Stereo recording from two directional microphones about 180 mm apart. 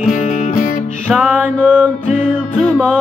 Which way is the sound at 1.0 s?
5° right (ahead or behind).